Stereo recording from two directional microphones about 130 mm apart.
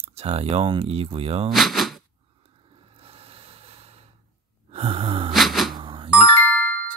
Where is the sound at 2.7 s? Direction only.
45° right (ahead or behind).